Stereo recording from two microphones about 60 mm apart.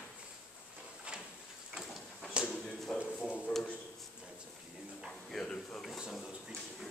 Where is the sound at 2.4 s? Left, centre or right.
Centre.